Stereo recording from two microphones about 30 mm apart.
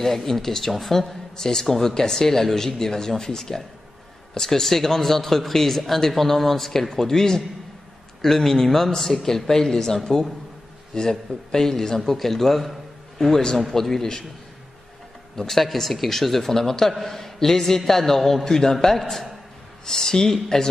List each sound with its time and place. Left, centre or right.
0.0 s speech: centre
1.3 s speech: centre
11.0 s speech: centre
13.2 s speech: centre
15.3 s a man's voice: centre
15.6 s speech: centre